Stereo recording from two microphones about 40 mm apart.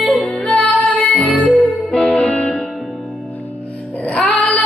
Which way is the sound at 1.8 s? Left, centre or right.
Left.